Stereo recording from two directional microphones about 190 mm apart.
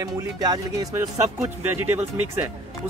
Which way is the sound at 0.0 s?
20° right (ahead or behind).